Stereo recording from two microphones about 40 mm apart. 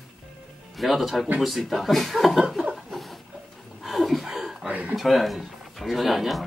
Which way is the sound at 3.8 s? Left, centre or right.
Centre.